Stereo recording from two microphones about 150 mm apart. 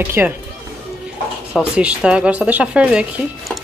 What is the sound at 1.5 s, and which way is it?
Speech, 5° right (ahead or behind).